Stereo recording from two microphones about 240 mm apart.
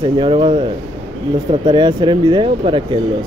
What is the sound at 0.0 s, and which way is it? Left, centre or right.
Speech, right.